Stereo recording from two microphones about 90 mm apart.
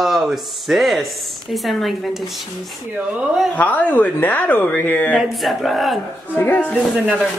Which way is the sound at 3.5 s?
15° left (ahead or behind).